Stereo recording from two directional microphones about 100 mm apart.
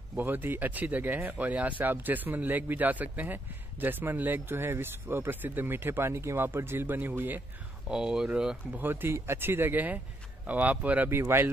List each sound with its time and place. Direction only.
0.1 s speech: 20° right (ahead or behind)
7.9 s speech: 5° right (ahead or behind)
8.7 s speech: 20° right (ahead or behind)